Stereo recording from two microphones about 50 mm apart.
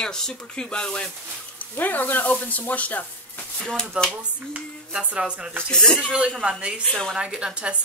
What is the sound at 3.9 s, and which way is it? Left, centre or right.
Music, right.